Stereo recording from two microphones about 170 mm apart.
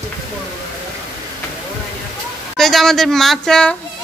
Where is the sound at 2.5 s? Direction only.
Centre (ahead or behind).